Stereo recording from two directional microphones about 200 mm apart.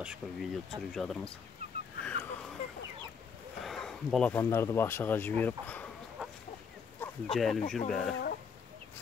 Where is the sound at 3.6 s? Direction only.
Centre (ahead or behind).